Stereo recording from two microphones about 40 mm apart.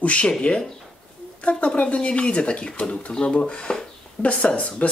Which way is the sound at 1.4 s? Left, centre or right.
Left.